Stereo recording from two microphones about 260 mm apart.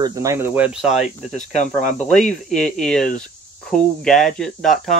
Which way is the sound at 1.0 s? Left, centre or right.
Left.